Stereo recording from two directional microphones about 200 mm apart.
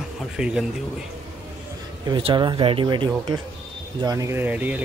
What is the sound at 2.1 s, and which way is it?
Speech, 25° right (ahead or behind).